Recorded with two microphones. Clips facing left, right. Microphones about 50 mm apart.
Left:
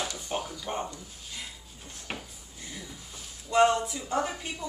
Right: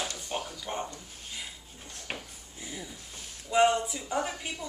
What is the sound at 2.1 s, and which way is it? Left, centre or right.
Drawer open or close, centre.